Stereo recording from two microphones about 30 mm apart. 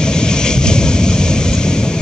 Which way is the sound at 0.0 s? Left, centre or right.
Left.